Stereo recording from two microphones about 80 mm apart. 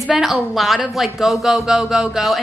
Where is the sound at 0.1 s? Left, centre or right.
Centre.